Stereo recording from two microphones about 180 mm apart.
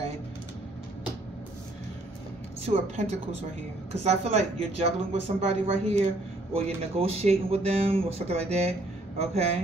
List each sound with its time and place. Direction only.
2.6 s speech: 35° right (ahead or behind)